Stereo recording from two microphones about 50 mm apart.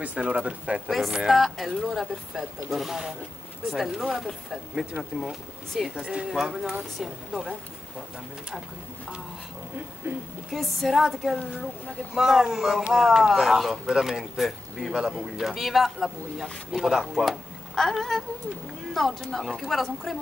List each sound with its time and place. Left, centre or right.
0.0 s speech: right
0.8 s speech: centre
5.9 s speech: centre
10.5 s speech: centre
17.3 s speech: centre